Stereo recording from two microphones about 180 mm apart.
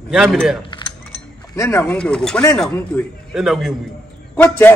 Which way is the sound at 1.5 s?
15° left (ahead or behind).